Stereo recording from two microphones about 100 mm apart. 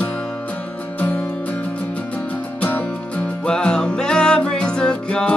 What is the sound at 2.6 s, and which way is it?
Music, 20° left (ahead or behind).